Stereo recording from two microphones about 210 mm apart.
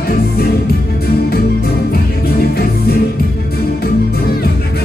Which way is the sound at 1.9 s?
45° left (ahead or behind).